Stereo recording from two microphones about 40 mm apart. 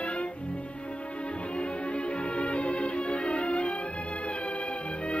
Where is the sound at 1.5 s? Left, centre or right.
Left.